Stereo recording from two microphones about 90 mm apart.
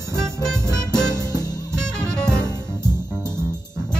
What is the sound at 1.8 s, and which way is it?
Music, 10° left (ahead or behind).